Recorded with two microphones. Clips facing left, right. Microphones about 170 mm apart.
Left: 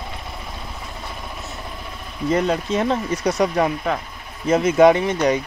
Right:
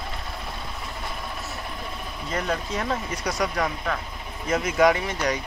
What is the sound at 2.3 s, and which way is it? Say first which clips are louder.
Speech: left 8 dB; 20° left (ahead or behind).